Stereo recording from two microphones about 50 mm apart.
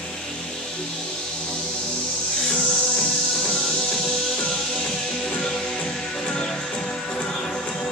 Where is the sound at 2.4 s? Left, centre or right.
Centre.